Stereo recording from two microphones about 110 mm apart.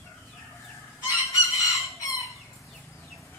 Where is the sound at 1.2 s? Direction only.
30° left (ahead or behind).